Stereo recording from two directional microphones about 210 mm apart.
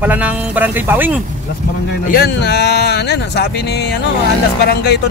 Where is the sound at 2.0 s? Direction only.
45° left (ahead or behind).